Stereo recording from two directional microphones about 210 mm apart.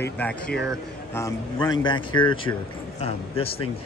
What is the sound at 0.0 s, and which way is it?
Speech, 5° left (ahead or behind).